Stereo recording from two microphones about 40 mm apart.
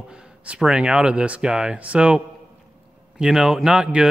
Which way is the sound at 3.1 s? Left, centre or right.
Centre.